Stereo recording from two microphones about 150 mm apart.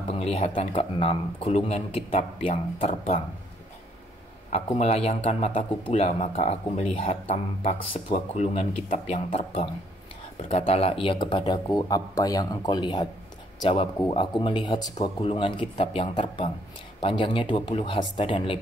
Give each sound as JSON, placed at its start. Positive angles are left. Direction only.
{"t": 0.1, "sound": "speech", "side_deg": 40}
{"t": 4.7, "sound": "speech", "side_deg": 45}
{"t": 10.5, "sound": "speech", "side_deg": 40}